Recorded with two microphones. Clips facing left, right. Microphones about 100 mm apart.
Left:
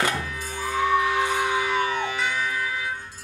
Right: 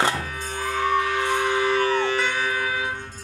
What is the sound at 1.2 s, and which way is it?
Music, 5° left (ahead or behind).